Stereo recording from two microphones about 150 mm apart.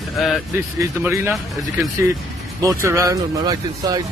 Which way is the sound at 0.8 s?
15° right (ahead or behind).